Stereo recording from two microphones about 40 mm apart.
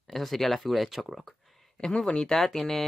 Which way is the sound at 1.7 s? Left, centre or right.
Left.